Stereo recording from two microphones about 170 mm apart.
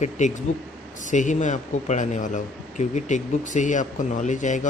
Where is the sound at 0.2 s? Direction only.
45° left (ahead or behind).